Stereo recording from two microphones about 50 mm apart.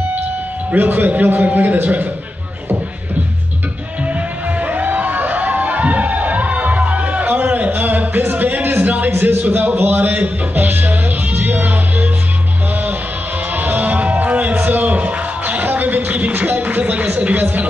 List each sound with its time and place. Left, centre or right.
0.7 s a man's voice: right
4.6 s music: right
9.5 s a sound: right
10.5 s music: right
13.6 s music: right
14.7 s a sound: right